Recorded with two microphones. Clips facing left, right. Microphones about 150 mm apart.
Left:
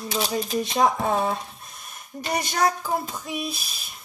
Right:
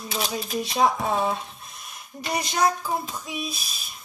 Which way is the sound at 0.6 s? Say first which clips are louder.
Even; 50° left (ahead or behind).